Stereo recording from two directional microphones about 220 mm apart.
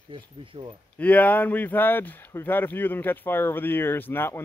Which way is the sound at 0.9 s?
5° left (ahead or behind).